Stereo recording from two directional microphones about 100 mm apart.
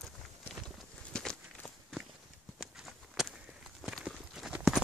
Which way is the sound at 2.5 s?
Centre (ahead or behind).